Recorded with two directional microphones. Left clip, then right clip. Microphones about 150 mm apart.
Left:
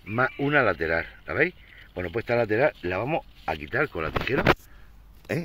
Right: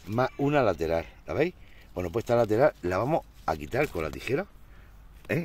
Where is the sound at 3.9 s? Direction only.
10° right (ahead or behind).